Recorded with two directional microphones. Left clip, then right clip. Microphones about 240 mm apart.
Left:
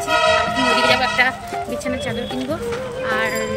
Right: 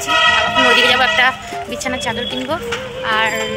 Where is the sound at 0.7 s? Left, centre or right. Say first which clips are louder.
Right 4 dB; centre.